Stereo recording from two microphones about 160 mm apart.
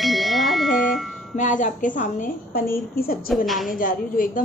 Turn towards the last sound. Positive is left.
turn(degrees=60)  # may be behind; listen again after turning